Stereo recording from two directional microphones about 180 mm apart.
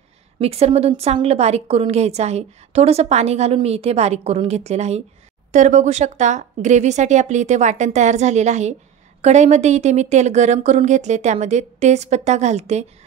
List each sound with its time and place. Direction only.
0.4 s a woman's voice: 35° right (ahead or behind)